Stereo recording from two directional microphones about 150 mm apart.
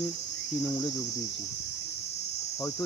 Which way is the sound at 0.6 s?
20° left (ahead or behind).